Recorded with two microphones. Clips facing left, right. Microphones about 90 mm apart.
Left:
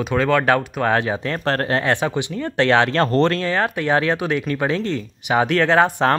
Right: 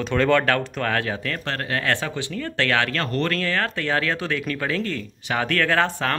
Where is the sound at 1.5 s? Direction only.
40° left (ahead or behind).